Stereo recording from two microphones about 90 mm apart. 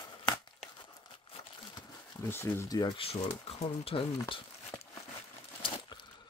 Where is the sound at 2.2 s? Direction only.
30° left (ahead or behind).